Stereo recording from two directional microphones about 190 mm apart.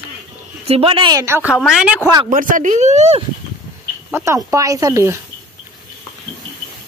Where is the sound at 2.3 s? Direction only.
45° right (ahead or behind).